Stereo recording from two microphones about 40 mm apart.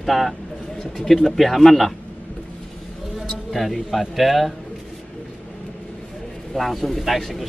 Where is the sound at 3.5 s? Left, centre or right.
Centre.